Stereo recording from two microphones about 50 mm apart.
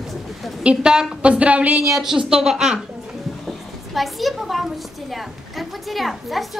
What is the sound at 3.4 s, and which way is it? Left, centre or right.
A woman's voice, centre.